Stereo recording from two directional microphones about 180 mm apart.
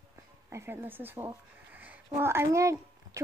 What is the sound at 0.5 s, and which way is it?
Speech, 15° right (ahead or behind).